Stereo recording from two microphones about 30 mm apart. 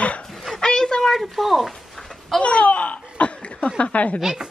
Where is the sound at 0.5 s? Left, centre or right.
Left.